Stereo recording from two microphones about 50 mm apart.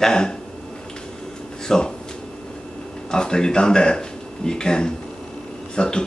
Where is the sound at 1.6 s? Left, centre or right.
Centre.